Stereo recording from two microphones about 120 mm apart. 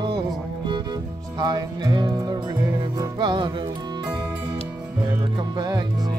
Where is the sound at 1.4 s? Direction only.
35° right (ahead or behind).